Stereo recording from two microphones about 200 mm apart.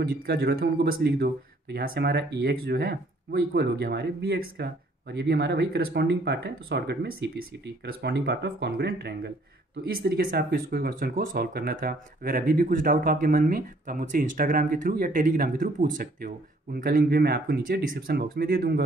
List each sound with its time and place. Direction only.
0.0 s speech: 50° right (ahead or behind)